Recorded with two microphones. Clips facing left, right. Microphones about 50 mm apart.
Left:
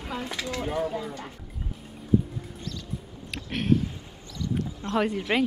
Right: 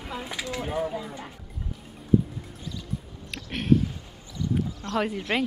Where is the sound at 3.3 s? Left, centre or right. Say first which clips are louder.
Right 2 dB; centre.